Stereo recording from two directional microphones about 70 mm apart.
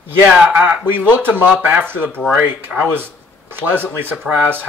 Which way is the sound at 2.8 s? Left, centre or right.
Right.